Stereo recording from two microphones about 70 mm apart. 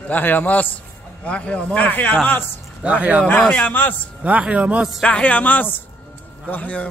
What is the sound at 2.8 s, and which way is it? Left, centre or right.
Speech, centre.